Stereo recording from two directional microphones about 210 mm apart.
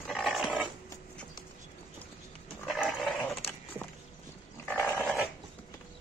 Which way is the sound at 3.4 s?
25° left (ahead or behind).